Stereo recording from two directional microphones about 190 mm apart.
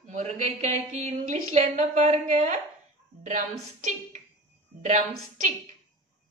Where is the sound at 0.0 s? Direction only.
40° right (ahead or behind).